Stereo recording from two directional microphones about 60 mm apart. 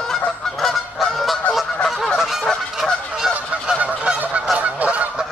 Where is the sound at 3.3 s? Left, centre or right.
Right.